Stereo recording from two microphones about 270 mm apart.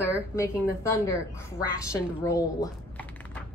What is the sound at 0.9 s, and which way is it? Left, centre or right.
Speech, centre.